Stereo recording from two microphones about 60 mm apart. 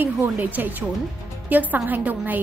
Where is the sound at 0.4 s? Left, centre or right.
Right.